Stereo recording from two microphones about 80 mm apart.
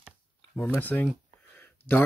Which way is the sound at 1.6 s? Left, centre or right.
Left.